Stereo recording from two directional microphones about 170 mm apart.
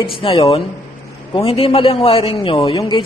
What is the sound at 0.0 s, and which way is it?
A man's voice, 30° left (ahead or behind).